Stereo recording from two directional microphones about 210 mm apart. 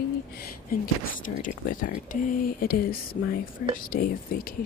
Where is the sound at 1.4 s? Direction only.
40° left (ahead or behind).